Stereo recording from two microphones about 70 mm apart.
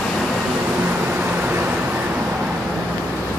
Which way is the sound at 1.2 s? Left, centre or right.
Right.